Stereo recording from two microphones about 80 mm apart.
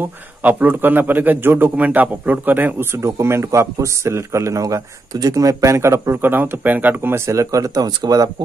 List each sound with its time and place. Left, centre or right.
0.0 s a man's voice: right
6.3 s a man's voice: right
7.3 s speech: right